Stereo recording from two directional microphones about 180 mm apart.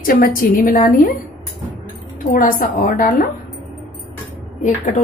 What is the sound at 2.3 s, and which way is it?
Speech, 50° left (ahead or behind).